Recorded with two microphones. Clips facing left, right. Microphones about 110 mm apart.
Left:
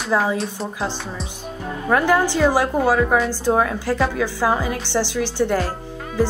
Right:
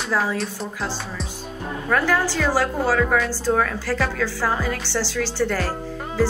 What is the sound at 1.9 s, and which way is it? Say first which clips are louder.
A woman's voice: left 4 dB; 15° left (ahead or behind).